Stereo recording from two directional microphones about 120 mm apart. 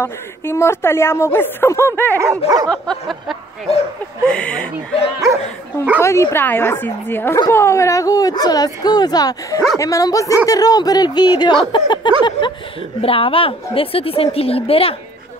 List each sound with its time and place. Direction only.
0.0 s a woman's voice: 20° left (ahead or behind)
2.1 s dog: 25° right (ahead or behind)
2.7 s a sound: 5° left (ahead or behind)
4.3 s a woman's voice: 10° left (ahead or behind)
5.9 s a woman's voice: 25° left (ahead or behind); by 15.0 s 55° left (ahead or behind)